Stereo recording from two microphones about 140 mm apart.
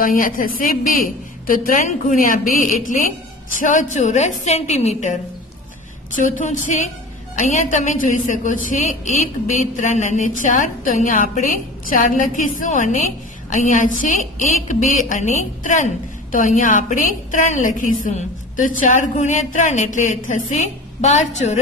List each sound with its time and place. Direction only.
0.0 s a woman's voice: 80° left; by 5.2 s 55° left (ahead or behind)
6.1 s a woman's voice: 70° left (ahead or behind)